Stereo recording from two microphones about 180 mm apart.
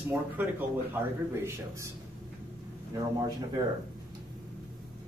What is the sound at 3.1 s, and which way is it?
Speech, 20° right (ahead or behind).